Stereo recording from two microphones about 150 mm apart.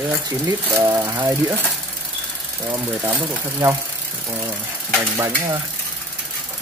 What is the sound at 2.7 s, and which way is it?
Speech, 10° right (ahead or behind).